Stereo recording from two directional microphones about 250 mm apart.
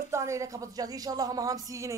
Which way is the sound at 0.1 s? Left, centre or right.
Centre.